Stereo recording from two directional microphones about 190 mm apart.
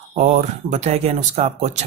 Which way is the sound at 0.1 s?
40° right (ahead or behind).